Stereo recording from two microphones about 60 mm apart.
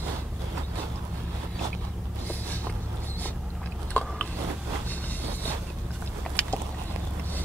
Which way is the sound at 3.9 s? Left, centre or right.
Left.